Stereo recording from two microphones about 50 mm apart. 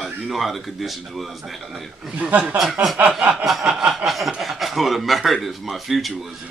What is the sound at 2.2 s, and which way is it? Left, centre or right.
Speech, right.